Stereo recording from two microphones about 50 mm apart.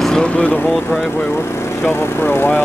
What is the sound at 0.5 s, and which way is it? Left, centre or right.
Speech, left.